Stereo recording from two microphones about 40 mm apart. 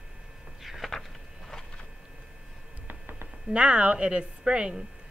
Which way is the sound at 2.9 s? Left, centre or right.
Right.